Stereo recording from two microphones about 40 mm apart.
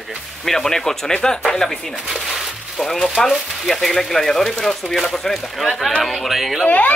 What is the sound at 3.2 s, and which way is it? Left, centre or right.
Speech, centre.